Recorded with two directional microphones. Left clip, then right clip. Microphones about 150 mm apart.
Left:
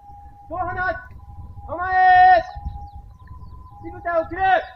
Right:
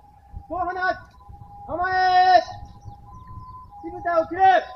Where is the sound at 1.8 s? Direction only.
10° right (ahead or behind).